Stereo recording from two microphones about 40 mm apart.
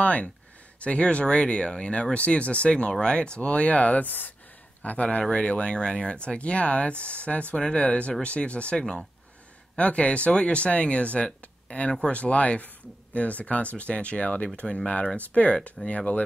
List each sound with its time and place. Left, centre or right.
0.0 s speech: left
4.8 s speech: left
7.5 s speech: centre
7.8 s speech: left
8.7 s speech: centre
9.8 s speech: left